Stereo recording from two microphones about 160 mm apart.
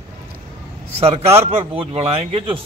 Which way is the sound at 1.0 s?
40° right (ahead or behind).